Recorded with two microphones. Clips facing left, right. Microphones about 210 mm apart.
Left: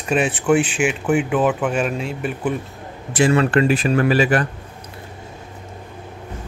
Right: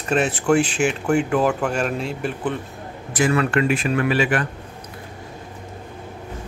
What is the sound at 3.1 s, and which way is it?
Speech, 30° left (ahead or behind).